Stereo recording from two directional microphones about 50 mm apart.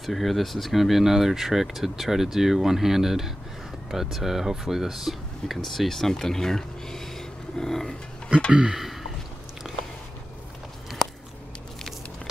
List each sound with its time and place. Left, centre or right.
0.0 s speech: centre
8.5 s speech: centre
8.7 s a sound: centre